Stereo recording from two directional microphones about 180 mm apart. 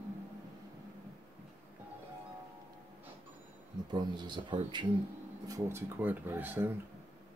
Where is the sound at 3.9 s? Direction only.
25° right (ahead or behind).